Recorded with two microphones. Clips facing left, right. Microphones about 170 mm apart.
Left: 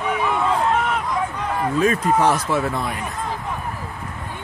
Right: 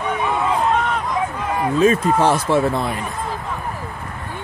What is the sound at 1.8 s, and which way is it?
Speech, 25° right (ahead or behind).